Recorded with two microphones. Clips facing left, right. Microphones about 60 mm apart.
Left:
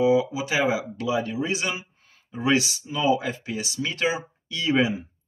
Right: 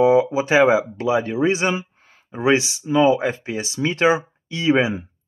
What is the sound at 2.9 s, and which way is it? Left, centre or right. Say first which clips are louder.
Speech: right 7 dB; right.